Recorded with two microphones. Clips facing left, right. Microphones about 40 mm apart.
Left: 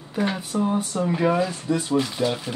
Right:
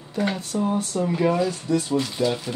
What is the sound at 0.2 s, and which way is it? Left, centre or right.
Speech, centre.